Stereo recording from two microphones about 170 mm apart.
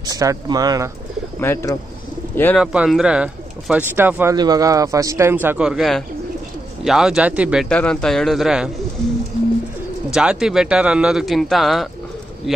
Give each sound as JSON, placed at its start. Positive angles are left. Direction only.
{"t": 0.0, "sound": "speech", "side_deg": -20}
{"t": 1.4, "sound": "speech", "side_deg": 15}
{"t": 2.5, "sound": "speech", "side_deg": -5}
{"t": 7.7, "sound": "speech", "side_deg": 5}
{"t": 10.1, "sound": "speech", "side_deg": -5}